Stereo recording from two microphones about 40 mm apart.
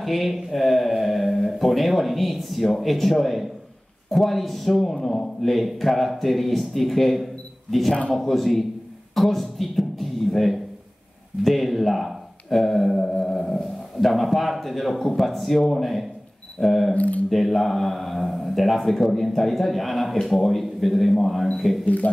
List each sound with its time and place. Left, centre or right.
0.0 s a man's voice: centre
9.1 s a sound: centre
11.4 s a man's voice: centre
16.9 s speech: left
17.3 s a man's voice: centre
21.8 s speech: left